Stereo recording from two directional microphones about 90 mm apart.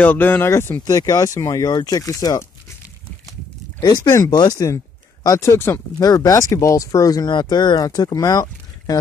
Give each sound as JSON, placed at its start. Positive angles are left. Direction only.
{"t": 0.0, "sound": "speech", "side_deg": 20}
{"t": 0.8, "sound": "speech", "side_deg": 40}
{"t": 3.8, "sound": "speech", "side_deg": 45}
{"t": 5.2, "sound": "speech", "side_deg": 35}
{"t": 6.0, "sound": "speech", "side_deg": 40}
{"t": 7.2, "sound": "speech", "side_deg": 55}